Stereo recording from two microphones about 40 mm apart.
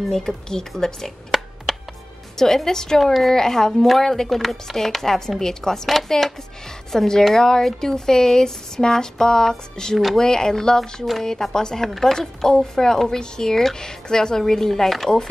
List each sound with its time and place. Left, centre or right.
0.5 s speech: centre
1.3 s music: centre
2.3 s speech: centre
3.0 s a woman's voice: centre
3.3 s speech: centre